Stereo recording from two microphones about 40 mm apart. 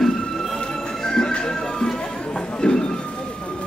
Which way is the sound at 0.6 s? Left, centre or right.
Centre.